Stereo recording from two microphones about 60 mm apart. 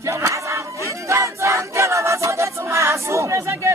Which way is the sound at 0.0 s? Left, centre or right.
Right.